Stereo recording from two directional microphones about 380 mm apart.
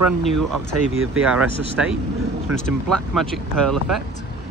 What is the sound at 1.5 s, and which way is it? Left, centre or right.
Speech, centre.